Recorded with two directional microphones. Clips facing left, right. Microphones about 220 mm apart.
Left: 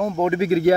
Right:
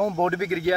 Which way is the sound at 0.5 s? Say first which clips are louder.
Left 7 dB; 30° left (ahead or behind).